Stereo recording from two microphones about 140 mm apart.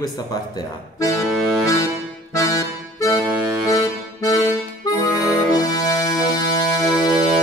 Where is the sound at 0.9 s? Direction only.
25° left (ahead or behind).